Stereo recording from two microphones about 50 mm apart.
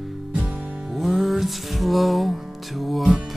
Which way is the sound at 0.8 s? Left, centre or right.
Centre.